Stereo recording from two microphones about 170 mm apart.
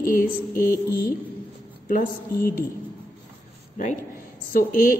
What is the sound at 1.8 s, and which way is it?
Speech, 55° left (ahead or behind).